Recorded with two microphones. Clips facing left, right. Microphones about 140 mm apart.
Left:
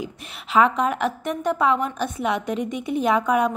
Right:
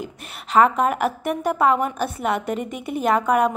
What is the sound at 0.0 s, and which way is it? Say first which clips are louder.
A woman's voice: even; centre (ahead or behind).